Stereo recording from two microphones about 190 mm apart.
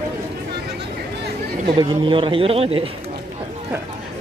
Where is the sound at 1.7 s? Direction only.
25° right (ahead or behind).